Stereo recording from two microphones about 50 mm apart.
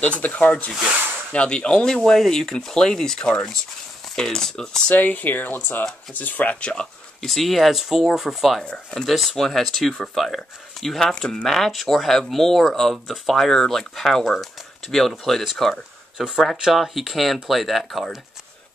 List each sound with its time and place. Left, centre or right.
0.0 s speech: left
2.0 s speech: centre
4.8 s speech: left
7.2 s speech: centre
11.4 s speech: centre
16.2 s speech: centre